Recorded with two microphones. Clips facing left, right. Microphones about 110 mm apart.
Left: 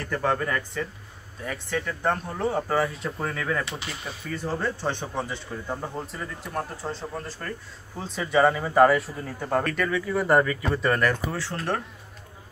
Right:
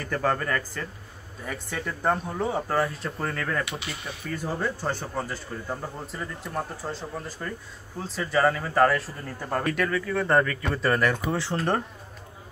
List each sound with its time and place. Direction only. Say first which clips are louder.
0.0 s speech: even; centre (ahead or behind)
10.7 s speech: right 1 dB; centre (ahead or behind)
11.2 s speech: right 3 dB; 25° right (ahead or behind)
11.5 s speech: right 3 dB; centre (ahead or behind)